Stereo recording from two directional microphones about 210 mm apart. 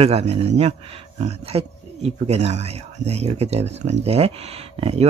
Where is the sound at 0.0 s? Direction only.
30° right (ahead or behind).